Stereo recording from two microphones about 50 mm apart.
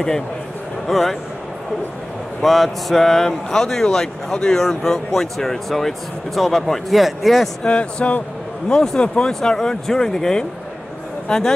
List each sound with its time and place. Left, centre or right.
0.8 s speech: centre
2.4 s speech: centre
7.6 s speech: left